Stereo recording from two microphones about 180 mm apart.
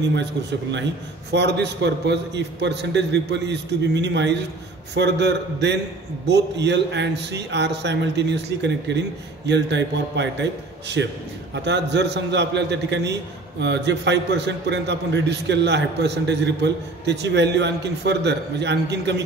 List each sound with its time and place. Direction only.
0.1 s a man's voice: 70° right (ahead or behind)